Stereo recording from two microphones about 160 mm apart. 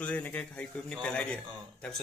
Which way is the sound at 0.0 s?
10° left (ahead or behind).